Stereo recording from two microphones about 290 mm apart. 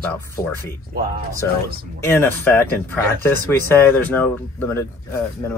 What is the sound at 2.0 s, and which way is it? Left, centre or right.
Speech, centre.